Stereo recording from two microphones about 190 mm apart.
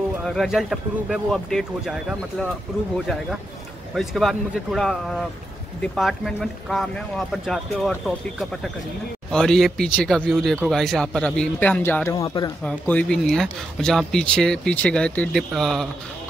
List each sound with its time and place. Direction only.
0.2 s speech: centre (ahead or behind)
3.9 s speech: centre (ahead or behind)
9.3 s speech: 5° left (ahead or behind)
12.2 s speech: 25° left (ahead or behind)
12.6 s speech: 5° left (ahead or behind)